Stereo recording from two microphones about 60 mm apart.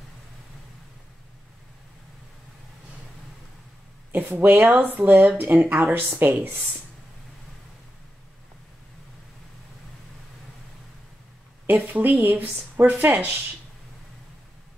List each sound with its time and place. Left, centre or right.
4.1 s a woman's voice: right
11.6 s a woman's voice: right